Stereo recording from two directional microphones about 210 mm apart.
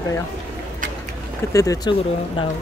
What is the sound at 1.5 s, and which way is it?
Speech, 15° left (ahead or behind).